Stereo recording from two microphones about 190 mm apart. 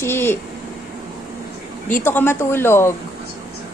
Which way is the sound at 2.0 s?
10° left (ahead or behind).